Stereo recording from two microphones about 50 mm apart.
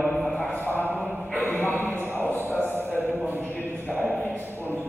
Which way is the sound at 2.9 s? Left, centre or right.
Right.